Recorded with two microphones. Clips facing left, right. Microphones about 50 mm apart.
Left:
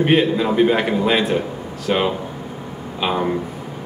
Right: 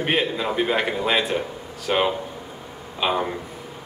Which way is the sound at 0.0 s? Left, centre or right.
Centre.